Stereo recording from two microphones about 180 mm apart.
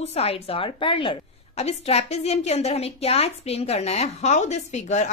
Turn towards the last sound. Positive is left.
turn(degrees=40)  # may be behind; listen again after turning